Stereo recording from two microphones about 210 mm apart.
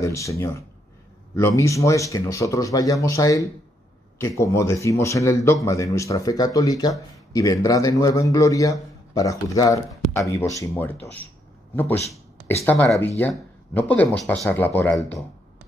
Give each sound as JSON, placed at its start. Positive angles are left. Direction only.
{"t": 0.0, "sound": "speech", "side_deg": 15}
{"t": 12.6, "sound": "speech", "side_deg": 5}